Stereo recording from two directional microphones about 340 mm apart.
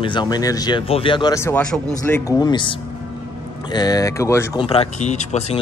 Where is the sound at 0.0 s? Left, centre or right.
Centre.